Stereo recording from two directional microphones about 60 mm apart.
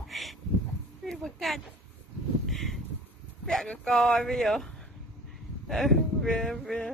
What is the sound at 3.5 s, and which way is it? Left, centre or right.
Speech, centre.